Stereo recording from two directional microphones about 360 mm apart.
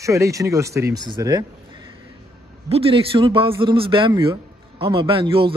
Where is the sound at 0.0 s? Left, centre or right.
Centre.